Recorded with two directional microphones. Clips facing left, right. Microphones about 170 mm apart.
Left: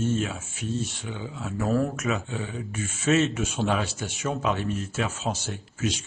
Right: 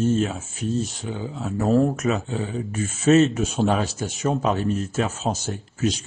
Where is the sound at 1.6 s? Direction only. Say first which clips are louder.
Right 6 dB; 25° right (ahead or behind).